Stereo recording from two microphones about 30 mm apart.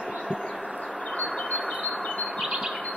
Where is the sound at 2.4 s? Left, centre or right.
Right.